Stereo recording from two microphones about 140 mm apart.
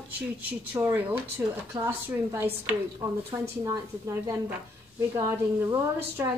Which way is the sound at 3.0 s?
30° right (ahead or behind).